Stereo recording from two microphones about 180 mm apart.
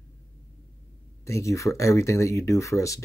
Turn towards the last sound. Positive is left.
turn(degrees=15)  # may be behind; listen again after turning